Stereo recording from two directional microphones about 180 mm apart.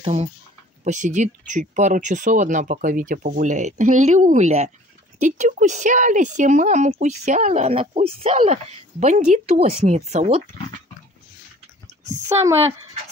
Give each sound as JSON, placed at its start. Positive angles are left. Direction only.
{"t": 0.0, "sound": "speech", "side_deg": -35}
{"t": 12.1, "sound": "speech", "side_deg": -15}